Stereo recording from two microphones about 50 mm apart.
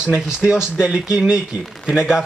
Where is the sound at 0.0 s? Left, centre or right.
Centre.